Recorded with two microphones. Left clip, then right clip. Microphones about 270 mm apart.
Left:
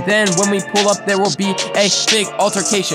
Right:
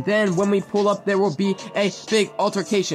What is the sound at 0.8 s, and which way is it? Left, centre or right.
Music, left.